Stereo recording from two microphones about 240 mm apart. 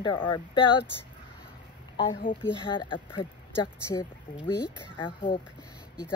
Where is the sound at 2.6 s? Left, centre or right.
Centre.